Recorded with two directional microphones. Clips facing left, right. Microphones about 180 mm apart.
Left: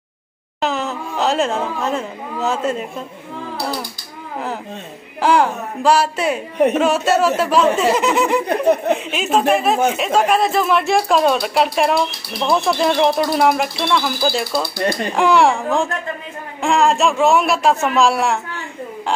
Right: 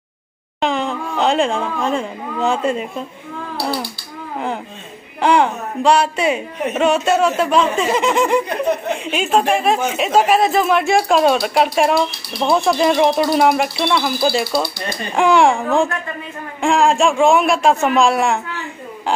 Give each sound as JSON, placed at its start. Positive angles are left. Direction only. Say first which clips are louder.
{"t": 0.6, "sound": "wail", "louder": "right 2 dB", "side_deg": 5}
{"t": 1.9, "sound": "speech", "louder": "right 2 dB", "side_deg": 5}
{"t": 5.2, "sound": "speech", "louder": "right 1 dB", "side_deg": 5}
{"t": 8.5, "sound": "laughter", "louder": "left 4 dB", "side_deg": 55}
{"t": 8.9, "sound": "speech", "louder": "right 1 dB", "side_deg": 0}